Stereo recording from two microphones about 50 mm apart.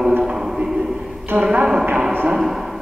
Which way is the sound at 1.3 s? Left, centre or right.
Right.